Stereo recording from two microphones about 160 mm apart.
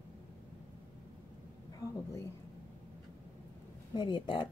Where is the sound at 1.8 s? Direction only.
20° left (ahead or behind).